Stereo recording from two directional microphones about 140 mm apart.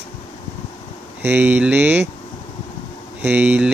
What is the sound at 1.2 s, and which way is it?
Speech, 10° right (ahead or behind).